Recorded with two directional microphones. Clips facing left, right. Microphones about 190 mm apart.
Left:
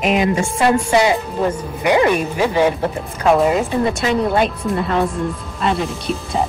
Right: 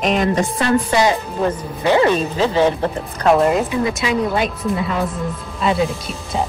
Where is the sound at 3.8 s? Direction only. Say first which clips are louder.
Left 2 dB; 50° left (ahead or behind).